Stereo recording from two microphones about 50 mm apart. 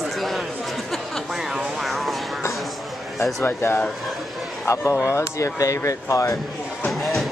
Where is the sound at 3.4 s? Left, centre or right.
Left.